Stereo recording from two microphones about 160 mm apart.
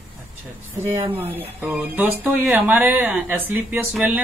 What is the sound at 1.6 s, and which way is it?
Speech, 10° right (ahead or behind).